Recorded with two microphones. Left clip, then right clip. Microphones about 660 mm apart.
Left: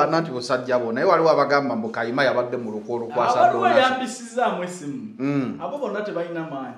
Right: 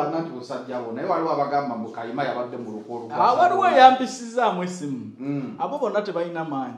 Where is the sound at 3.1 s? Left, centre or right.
Right.